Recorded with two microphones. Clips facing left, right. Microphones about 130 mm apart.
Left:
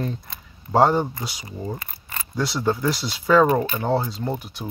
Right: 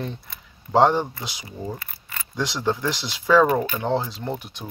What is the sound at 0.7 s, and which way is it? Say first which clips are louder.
Speech: even; 5° left (ahead or behind).